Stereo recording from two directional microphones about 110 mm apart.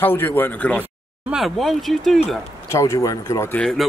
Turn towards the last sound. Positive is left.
turn(degrees=5)  # may be behind; listen again after turning